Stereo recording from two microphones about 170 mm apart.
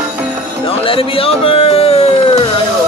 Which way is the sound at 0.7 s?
35° left (ahead or behind).